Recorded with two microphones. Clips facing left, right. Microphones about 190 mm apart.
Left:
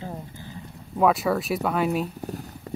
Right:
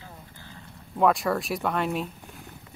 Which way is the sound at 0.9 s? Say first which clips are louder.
Left 2 dB; 5° left (ahead or behind).